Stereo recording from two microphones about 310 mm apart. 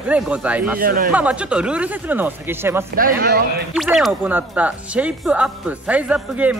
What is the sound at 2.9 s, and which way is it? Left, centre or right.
Speech, right.